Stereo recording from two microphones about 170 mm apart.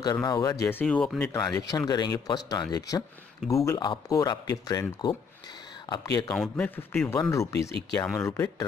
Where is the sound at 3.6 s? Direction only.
25° left (ahead or behind).